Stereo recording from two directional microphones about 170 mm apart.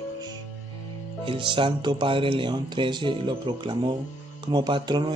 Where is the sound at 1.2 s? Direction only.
30° right (ahead or behind).